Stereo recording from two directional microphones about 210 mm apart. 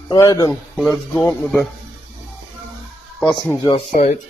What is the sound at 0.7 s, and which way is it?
Speech, 5° left (ahead or behind).